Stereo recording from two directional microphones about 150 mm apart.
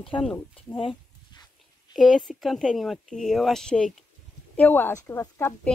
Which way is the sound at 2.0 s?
Centre (ahead or behind).